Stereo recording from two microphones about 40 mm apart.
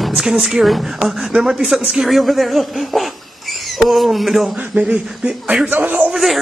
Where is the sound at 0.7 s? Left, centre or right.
Centre.